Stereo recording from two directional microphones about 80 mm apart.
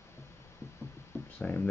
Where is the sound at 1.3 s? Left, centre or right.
Centre.